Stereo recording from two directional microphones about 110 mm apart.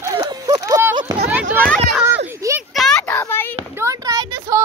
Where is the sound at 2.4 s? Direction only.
30° right (ahead or behind).